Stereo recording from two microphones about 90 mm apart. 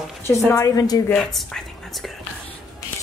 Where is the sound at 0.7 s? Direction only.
45° left (ahead or behind).